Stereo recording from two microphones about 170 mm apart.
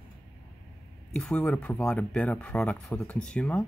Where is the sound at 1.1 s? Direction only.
5° left (ahead or behind).